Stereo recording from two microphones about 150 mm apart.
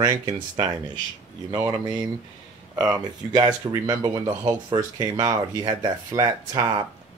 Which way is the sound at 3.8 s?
25° right (ahead or behind).